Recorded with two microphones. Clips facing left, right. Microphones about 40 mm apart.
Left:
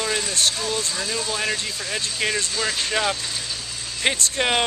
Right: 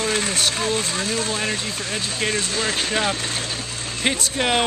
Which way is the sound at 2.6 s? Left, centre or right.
Right.